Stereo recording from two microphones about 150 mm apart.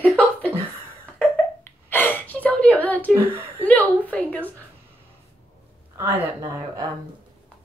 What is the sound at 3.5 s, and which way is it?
Speech, 10° left (ahead or behind).